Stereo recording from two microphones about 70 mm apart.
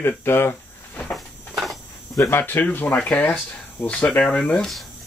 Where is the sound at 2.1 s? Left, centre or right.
Left.